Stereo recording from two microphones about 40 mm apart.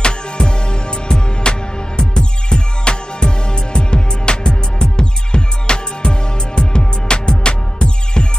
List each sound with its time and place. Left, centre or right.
0.0 s music: left